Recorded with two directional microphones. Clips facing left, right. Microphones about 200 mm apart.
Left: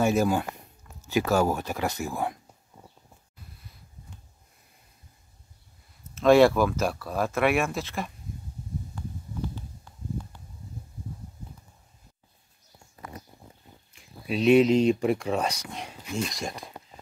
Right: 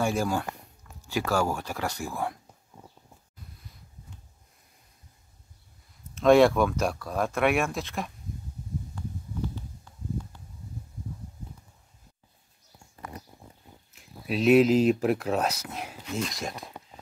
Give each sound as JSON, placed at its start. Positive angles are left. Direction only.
{"t": 0.0, "sound": "speech", "side_deg": 20}
{"t": 6.1, "sound": "speech", "side_deg": 0}
{"t": 13.9, "sound": "speech", "side_deg": 0}